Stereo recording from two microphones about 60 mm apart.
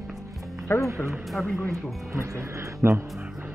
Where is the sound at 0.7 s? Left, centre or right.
Left.